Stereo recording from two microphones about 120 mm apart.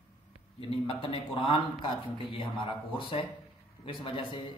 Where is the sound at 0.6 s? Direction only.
50° left (ahead or behind).